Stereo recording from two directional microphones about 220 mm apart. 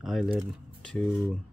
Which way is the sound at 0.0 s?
Centre (ahead or behind).